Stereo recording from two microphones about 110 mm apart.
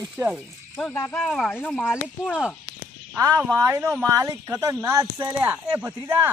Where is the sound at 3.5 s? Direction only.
25° right (ahead or behind).